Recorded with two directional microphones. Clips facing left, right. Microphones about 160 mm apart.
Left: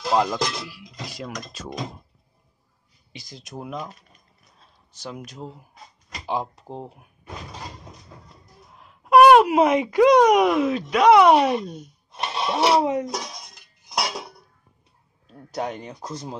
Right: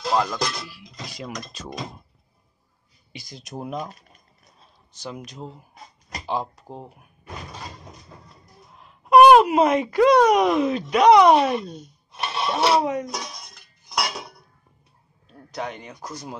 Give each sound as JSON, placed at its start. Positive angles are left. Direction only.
{"t": 0.1, "sound": "speech", "side_deg": 15}
{"t": 3.1, "sound": "speech", "side_deg": -10}
{"t": 4.9, "sound": "speech", "side_deg": 5}
{"t": 8.7, "sound": "speech", "side_deg": 5}
{"t": 12.2, "sound": "gasp", "side_deg": 20}
{"t": 12.5, "sound": "speech", "side_deg": 10}
{"t": 12.8, "sound": "speech", "side_deg": 20}
{"t": 15.5, "sound": "speech", "side_deg": 40}